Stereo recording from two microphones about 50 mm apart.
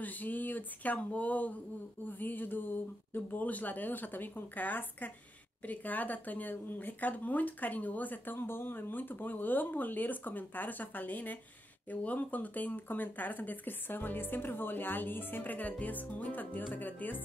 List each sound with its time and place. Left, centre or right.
0.0 s speech: left